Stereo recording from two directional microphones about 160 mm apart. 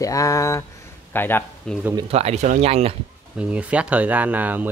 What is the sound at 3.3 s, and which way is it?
Speech, 10° right (ahead or behind).